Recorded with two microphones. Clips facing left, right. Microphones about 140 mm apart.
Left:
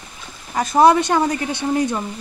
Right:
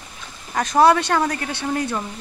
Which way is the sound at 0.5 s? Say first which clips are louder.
Left 2 dB; 5° left (ahead or behind).